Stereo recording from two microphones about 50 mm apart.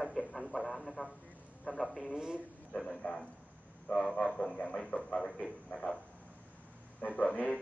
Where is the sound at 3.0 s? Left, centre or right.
Left.